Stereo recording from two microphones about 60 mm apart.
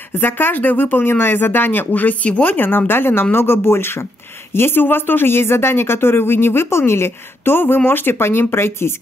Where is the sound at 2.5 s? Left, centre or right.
Left.